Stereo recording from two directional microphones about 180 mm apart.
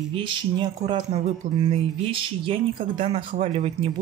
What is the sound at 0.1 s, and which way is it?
Speech, 25° right (ahead or behind).